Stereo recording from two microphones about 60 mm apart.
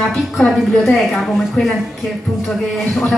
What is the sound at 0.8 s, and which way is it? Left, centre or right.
Speech, centre.